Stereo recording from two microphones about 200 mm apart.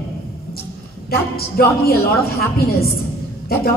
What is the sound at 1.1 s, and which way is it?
A woman's voice, 50° left (ahead or behind).